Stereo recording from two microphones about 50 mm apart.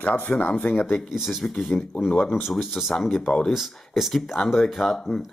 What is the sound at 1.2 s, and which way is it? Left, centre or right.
Speech, centre.